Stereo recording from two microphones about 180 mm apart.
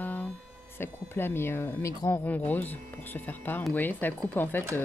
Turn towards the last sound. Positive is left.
turn(degrees=10)  # may be behind; listen again after turning